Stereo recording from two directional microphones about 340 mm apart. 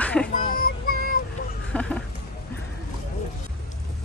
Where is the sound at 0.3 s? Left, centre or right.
Left.